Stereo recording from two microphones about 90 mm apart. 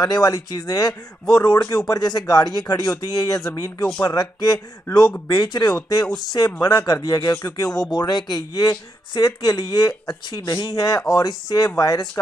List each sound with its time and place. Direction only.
0.0 s speech: 45° left (ahead or behind)